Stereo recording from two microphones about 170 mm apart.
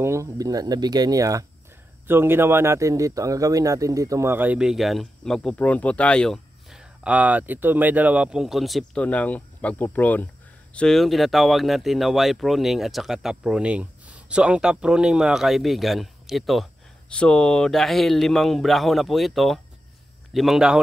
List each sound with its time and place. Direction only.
0.0 s a man's voice: 15° right (ahead or behind)